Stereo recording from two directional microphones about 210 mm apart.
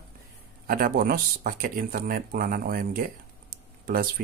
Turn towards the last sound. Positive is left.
turn(degrees=-45)  # may be behind; listen again after turning